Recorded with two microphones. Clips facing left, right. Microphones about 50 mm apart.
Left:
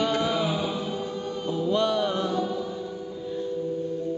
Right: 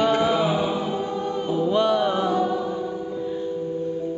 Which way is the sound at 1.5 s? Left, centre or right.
Centre.